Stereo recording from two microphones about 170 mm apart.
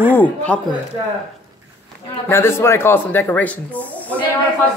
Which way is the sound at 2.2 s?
15° left (ahead or behind).